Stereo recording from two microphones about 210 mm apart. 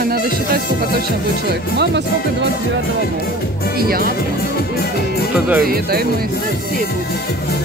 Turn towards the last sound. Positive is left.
turn(degrees=-45)  # may be behind; listen again after turning